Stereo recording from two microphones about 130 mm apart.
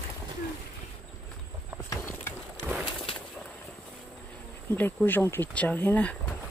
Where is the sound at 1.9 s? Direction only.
20° left (ahead or behind).